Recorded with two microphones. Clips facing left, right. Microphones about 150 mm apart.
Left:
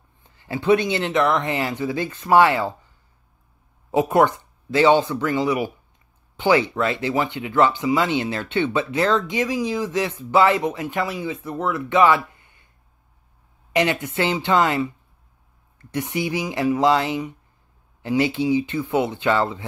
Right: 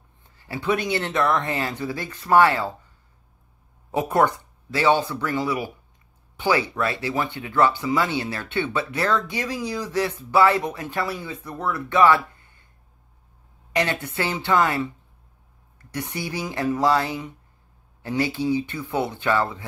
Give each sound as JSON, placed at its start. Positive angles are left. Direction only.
{"t": 0.4, "sound": "speech", "side_deg": 25}
{"t": 3.9, "sound": "speech", "side_deg": 20}
{"t": 13.7, "sound": "speech", "side_deg": 20}
{"t": 15.9, "sound": "speech", "side_deg": 20}